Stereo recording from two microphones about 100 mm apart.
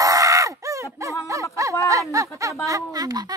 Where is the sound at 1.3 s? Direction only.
30° right (ahead or behind).